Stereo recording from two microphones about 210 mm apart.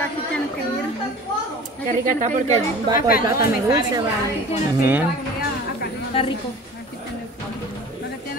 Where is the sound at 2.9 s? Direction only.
20° right (ahead or behind).